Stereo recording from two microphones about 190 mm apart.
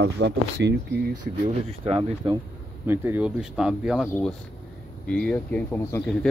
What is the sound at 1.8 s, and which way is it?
Speech, 25° right (ahead or behind).